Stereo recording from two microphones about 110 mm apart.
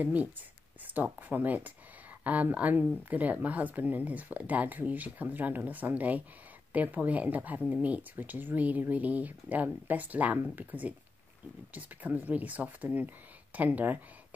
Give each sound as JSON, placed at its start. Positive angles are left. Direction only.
{"t": 0.0, "sound": "speech", "side_deg": -15}